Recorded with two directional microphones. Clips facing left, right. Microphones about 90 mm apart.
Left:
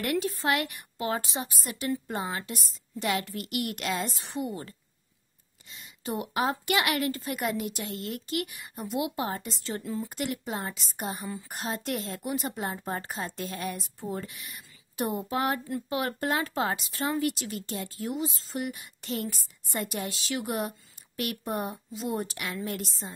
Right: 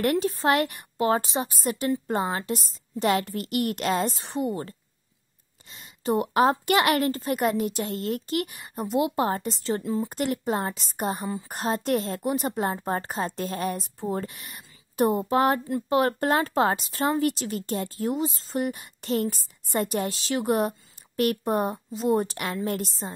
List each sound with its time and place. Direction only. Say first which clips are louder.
0.0 s a woman's voice: right 5 dB; 40° right (ahead or behind)